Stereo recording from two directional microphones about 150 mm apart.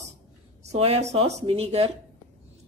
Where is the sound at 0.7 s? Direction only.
45° right (ahead or behind).